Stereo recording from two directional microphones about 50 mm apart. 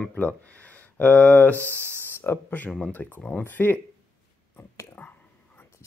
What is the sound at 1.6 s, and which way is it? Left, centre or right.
Speech, right.